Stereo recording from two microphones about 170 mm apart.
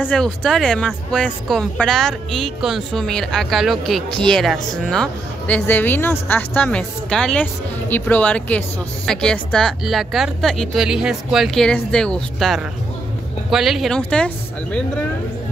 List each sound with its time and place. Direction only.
0.0 s speech: 5° left (ahead or behind)